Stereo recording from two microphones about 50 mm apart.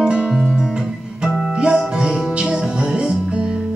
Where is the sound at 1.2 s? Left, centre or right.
Centre.